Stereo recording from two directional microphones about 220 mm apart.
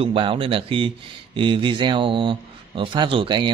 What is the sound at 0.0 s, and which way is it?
Speech, 25° right (ahead or behind).